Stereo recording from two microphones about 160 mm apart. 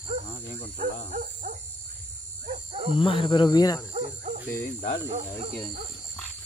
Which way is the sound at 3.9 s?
40° right (ahead or behind).